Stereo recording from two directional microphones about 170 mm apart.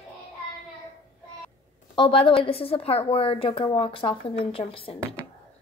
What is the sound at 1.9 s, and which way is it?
A woman's voice, 30° left (ahead or behind).